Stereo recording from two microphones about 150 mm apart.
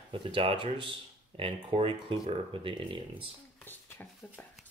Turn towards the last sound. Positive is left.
turn(degrees=10)  # may be behind; listen again after turning